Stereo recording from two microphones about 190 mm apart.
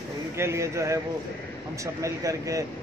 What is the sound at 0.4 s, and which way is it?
Speech, 15° right (ahead or behind).